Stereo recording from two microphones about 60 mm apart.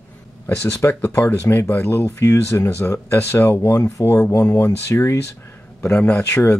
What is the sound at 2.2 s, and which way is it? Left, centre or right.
Speech, left.